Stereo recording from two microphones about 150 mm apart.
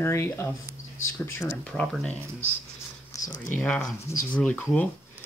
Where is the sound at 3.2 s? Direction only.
60° left (ahead or behind).